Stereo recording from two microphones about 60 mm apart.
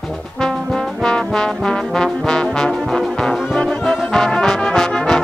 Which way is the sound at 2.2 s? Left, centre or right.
Centre.